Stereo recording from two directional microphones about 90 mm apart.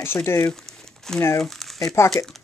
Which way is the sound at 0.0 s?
25° left (ahead or behind).